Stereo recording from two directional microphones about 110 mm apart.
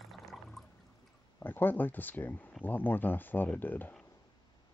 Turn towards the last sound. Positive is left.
turn(degrees=15)  # may be behind; listen again after turning